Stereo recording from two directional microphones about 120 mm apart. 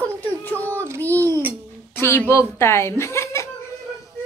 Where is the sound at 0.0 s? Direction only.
15° left (ahead or behind).